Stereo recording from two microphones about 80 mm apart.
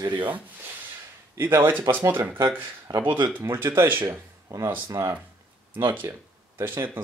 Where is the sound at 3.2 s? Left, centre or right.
Right.